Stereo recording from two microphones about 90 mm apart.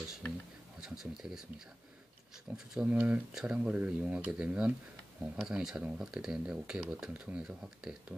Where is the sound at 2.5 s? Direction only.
20° right (ahead or behind).